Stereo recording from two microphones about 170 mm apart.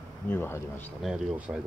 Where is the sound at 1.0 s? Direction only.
5° right (ahead or behind).